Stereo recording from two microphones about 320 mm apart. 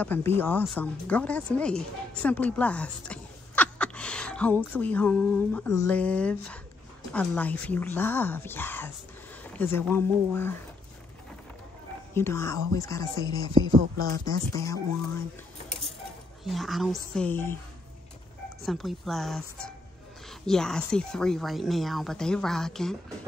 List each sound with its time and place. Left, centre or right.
0.0 s speech: centre
12.1 s speech: centre
13.5 s speech: centre
14.2 s speech: centre
16.4 s speech: centre
18.7 s speech: centre